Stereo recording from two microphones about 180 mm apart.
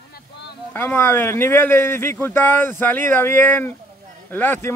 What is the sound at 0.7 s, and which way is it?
Speech, 15° left (ahead or behind).